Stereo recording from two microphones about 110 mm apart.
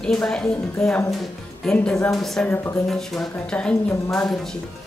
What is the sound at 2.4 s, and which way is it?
Speech, 20° left (ahead or behind).